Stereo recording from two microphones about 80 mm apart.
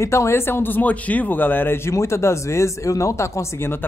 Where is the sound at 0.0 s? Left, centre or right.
Left.